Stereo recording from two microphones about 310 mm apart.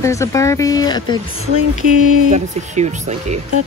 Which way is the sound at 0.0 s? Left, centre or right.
Centre.